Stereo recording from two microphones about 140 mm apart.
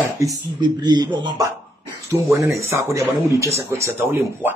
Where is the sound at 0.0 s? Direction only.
25° right (ahead or behind).